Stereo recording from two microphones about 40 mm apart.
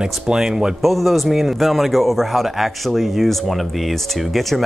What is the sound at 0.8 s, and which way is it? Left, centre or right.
A man's voice, centre.